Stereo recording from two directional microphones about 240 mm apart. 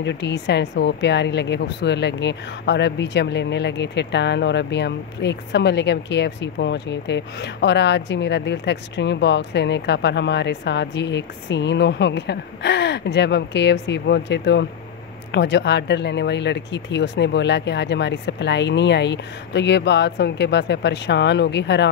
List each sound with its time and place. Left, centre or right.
0.0 s a woman's voice: left